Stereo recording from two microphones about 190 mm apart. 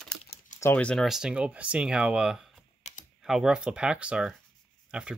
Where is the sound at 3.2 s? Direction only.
Centre (ahead or behind).